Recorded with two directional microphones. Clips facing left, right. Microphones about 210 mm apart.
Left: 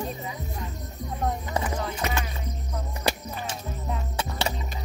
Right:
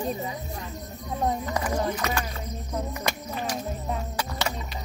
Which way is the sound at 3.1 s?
35° left (ahead or behind).